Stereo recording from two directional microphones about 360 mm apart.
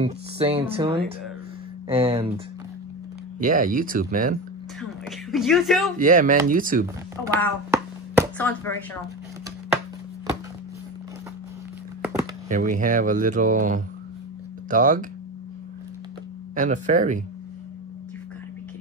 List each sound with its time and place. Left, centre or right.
0.0 s speech: centre
3.3 s speech: right
5.3 s speech: centre
5.9 s speech: right
7.2 s a sound: centre
8.4 s speech: centre
12.4 s speech: right
16.5 s speech: right